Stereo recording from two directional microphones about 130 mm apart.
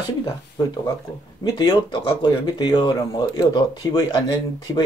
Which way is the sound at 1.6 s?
35° left (ahead or behind).